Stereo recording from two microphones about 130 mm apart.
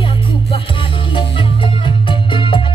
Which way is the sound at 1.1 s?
40° left (ahead or behind).